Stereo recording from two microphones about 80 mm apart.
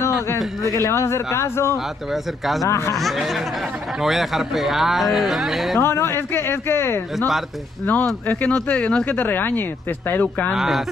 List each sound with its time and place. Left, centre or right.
0.8 s speech: left
3.0 s speech: centre
5.8 s speech: left
10.5 s speech: centre